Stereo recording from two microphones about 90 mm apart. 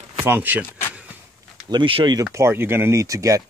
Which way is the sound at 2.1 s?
35° right (ahead or behind).